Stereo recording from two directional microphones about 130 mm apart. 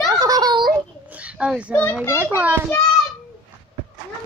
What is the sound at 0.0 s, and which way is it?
Child singing, 30° right (ahead or behind).